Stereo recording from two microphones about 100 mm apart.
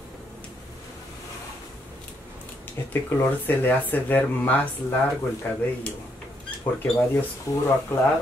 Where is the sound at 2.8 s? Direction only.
25° left (ahead or behind).